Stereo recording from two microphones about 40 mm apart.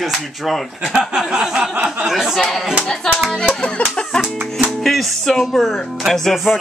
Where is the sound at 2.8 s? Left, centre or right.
Centre.